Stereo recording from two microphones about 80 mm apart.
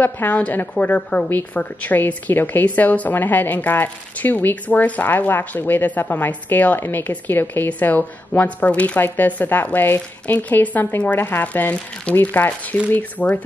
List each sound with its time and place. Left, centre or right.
0.0 s a woman's voice: left